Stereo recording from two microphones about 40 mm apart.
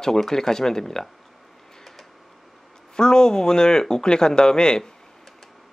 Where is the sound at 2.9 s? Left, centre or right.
Centre.